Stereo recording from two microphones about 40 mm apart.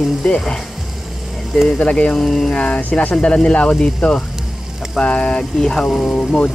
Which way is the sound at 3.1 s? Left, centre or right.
Left.